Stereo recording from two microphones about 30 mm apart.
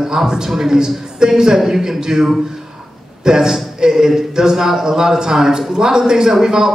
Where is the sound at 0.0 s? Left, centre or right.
Centre.